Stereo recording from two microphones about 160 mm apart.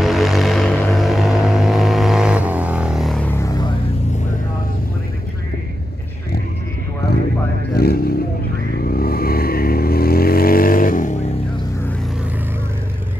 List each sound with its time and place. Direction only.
0.0 s vehicle: centre (ahead or behind)
3.3 s music: 20° left (ahead or behind)
7.7 s vehicle: 75° left (ahead or behind); by 11.1 s 55° left (ahead or behind)